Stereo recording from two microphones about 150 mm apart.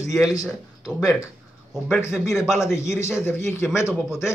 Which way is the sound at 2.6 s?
20° left (ahead or behind).